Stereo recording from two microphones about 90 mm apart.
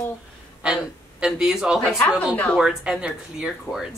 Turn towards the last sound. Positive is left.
turn(degrees=-5)  # may be behind; listen again after turning